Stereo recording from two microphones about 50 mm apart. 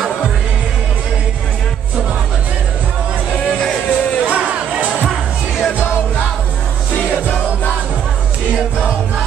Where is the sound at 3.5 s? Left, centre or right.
Centre.